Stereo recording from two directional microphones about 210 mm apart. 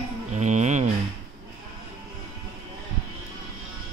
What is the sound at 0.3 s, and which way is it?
Music, 35° right (ahead or behind).